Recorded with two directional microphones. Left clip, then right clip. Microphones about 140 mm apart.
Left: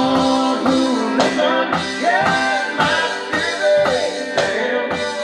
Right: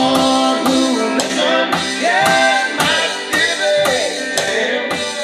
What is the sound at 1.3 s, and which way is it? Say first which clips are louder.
Music: right 2 dB; 25° right (ahead or behind).